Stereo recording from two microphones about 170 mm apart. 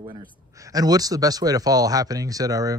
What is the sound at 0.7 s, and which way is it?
Speech, 20° right (ahead or behind).